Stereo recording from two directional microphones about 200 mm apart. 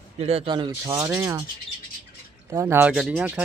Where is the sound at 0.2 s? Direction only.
30° right (ahead or behind); by 1.4 s 15° right (ahead or behind).